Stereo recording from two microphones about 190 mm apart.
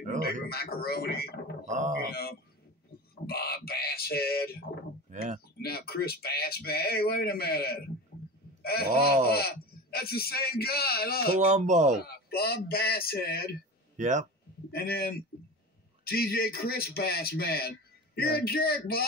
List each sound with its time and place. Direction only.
0.2 s speech: 55° left (ahead or behind)
5.1 s speech: 40° right (ahead or behind)
5.6 s a man's voice: 55° left (ahead or behind)
11.3 s speech: 40° right (ahead or behind)
12.3 s a man's voice: 55° left (ahead or behind)
13.9 s speech: 40° right (ahead or behind)
14.7 s a man's voice: 55° left (ahead or behind)